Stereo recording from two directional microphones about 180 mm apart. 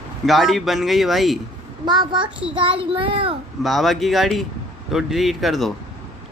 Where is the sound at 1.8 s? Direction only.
25° right (ahead or behind).